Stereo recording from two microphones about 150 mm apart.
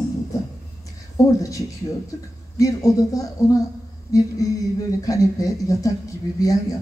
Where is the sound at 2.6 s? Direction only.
20° left (ahead or behind).